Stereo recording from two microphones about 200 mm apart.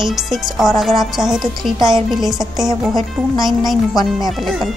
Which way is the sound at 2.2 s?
Centre (ahead or behind).